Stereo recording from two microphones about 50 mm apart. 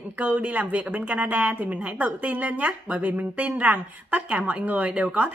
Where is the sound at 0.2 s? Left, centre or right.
Right.